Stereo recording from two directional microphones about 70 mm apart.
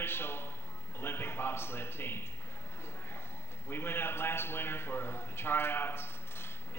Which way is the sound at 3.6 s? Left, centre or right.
Left.